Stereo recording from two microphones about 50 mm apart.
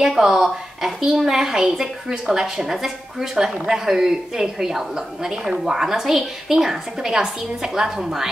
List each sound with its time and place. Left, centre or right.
0.0 s a woman's voice: centre